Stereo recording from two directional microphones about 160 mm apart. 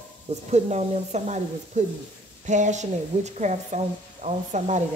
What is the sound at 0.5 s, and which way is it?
A woman's voice, 45° right (ahead or behind).